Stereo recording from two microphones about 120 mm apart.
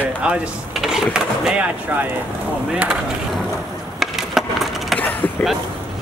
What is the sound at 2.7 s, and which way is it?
Speech, 5° right (ahead or behind).